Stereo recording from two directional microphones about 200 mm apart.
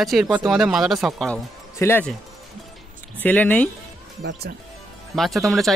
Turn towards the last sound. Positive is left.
turn(degrees=0)  # may be behind; listen again after turning